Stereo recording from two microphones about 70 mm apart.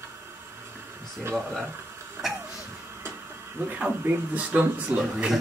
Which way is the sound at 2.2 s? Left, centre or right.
Right.